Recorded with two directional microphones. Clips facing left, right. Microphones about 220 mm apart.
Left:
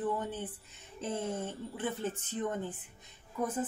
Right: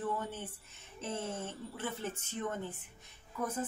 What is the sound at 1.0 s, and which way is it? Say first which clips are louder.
Speech: left 4 dB; 15° left (ahead or behind).